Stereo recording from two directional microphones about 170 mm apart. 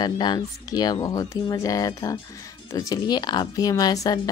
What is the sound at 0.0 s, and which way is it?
Speech, 25° left (ahead or behind).